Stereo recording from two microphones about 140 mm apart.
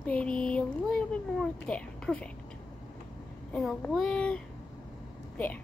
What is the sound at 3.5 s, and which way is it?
Speech, 5° left (ahead or behind).